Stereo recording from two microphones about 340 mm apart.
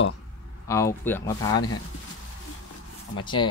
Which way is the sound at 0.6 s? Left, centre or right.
Centre.